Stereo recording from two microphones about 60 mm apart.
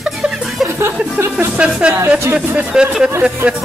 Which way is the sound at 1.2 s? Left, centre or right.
Right.